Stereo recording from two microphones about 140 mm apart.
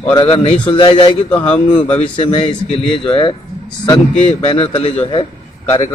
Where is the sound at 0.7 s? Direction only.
35° left (ahead or behind).